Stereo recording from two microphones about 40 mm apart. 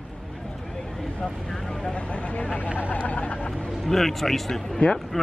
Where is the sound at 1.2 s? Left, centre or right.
Centre.